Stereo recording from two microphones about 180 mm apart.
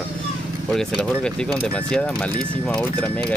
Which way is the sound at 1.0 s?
5° left (ahead or behind).